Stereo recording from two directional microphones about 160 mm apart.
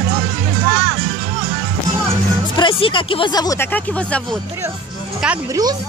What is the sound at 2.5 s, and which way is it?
Speech, 30° left (ahead or behind).